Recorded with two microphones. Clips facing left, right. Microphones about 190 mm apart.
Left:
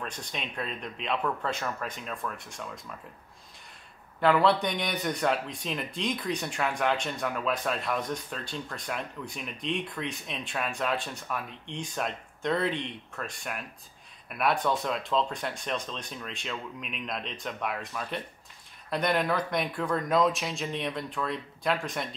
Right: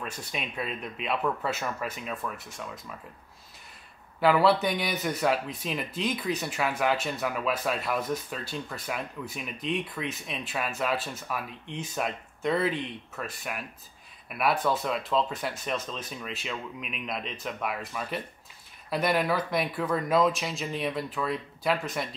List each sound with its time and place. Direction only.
0.0 s speech: 5° right (ahead or behind)
4.2 s speech: 5° right (ahead or behind)